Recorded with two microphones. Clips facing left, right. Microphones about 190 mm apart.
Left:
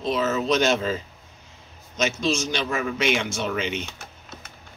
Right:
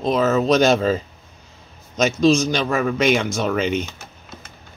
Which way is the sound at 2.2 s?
35° right (ahead or behind).